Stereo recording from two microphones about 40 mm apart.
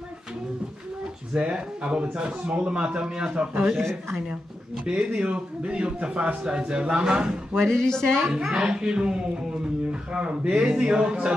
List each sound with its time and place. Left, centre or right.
1.3 s a man's voice: right
4.8 s a man's voice: right
7.6 s a woman's voice: centre
8.3 s a man's voice: centre